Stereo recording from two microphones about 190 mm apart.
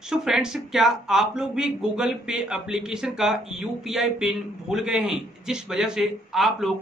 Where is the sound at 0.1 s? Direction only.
5° right (ahead or behind).